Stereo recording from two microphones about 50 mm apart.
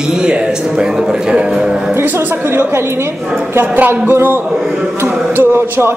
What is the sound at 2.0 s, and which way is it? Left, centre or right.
Speech, right.